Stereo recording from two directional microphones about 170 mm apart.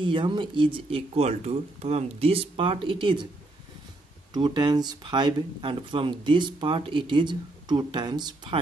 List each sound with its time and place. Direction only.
0.0 s speech: 30° right (ahead or behind)
4.3 s speech: 25° right (ahead or behind)